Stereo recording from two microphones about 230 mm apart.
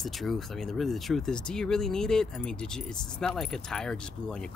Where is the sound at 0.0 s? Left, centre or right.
Centre.